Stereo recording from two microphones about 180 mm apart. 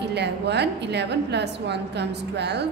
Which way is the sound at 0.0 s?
70° right (ahead or behind).